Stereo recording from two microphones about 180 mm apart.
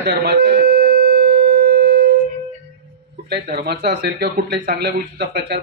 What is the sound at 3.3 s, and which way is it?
A man's voice, 60° right (ahead or behind).